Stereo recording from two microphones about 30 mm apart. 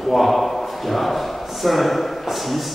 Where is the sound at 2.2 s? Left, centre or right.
Centre.